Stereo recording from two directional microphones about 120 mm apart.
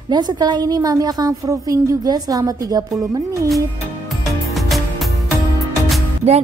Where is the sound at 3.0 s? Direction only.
25° right (ahead or behind).